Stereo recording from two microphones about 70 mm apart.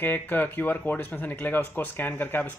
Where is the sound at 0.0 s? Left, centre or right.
Left.